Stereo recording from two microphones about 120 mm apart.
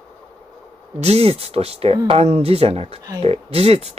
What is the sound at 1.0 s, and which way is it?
Speech, 60° right (ahead or behind).